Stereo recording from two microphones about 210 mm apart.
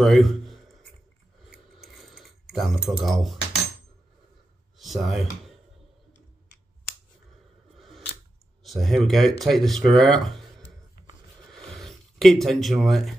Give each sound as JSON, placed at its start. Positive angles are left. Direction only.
{"t": 0.0, "sound": "a sound", "side_deg": 0}
{"t": 1.4, "sound": "keys jangling", "side_deg": 0}
{"t": 3.0, "sound": "speech", "side_deg": 0}
{"t": 4.7, "sound": "speech", "side_deg": 0}
{"t": 8.6, "sound": "speech", "side_deg": 0}
{"t": 11.4, "sound": "a sound", "side_deg": 0}